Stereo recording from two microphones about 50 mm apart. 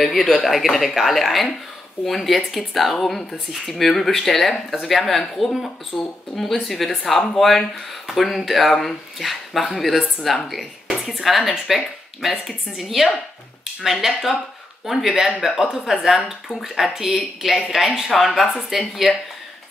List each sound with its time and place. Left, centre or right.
0.0 s speech: centre
5.9 s speech: centre
6.3 s speech: centre